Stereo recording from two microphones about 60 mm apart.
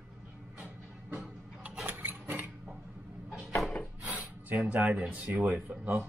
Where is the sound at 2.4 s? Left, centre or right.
Centre.